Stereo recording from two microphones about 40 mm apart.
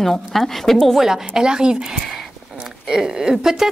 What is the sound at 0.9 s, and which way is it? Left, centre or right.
Speech, centre.